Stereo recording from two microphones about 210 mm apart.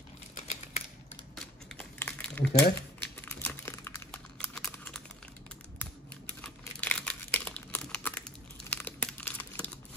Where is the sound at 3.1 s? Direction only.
10° left (ahead or behind).